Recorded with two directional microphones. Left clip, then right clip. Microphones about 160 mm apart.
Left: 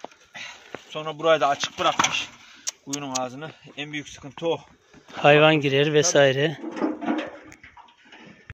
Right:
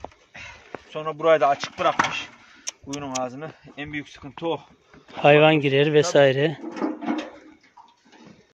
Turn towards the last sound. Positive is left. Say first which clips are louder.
# left 1 dB
turn(degrees=40)  # may be behind; listen again after turning